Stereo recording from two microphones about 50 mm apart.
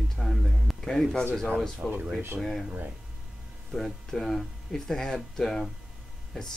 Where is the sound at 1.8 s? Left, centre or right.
Right.